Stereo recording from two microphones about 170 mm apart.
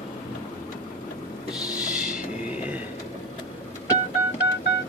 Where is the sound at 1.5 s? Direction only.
5° right (ahead or behind).